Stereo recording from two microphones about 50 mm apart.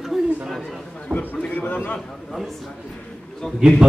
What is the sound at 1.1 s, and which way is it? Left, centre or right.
Speech, left.